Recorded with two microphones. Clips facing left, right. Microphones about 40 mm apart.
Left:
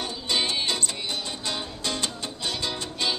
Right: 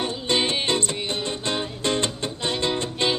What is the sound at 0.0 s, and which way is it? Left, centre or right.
Music, right.